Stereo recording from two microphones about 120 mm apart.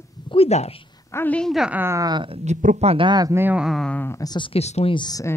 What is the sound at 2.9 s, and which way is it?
Speech, 40° right (ahead or behind).